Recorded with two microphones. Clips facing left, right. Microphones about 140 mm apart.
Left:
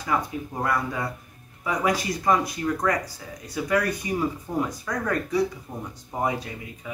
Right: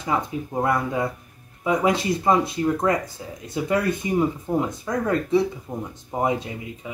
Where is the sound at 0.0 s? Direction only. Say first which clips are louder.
Right 2 dB; 25° right (ahead or behind).